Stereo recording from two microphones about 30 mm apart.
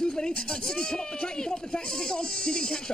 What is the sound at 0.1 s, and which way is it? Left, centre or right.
Speech, left.